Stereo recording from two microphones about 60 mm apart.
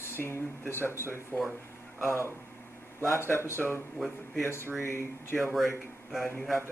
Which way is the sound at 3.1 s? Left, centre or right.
Left.